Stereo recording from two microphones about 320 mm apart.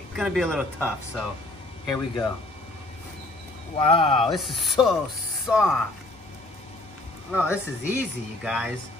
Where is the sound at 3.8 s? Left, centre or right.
Centre.